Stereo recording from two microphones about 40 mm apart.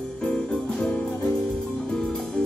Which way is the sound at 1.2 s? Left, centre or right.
Centre.